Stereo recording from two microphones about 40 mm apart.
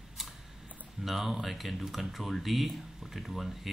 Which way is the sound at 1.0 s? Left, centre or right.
Centre.